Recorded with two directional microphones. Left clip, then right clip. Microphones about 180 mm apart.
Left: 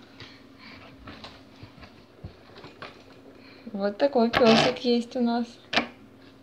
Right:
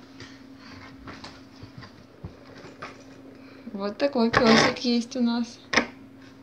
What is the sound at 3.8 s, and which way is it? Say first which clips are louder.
Speech: left 2 dB; 20° left (ahead or behind).